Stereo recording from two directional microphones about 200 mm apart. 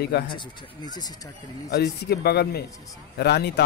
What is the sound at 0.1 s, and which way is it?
Speech, 55° left (ahead or behind).